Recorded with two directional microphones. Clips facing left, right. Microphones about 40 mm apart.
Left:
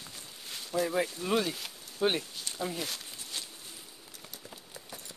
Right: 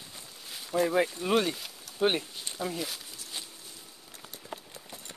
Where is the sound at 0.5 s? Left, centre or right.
Centre.